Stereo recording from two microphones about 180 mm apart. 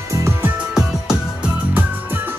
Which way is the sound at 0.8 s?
5° right (ahead or behind).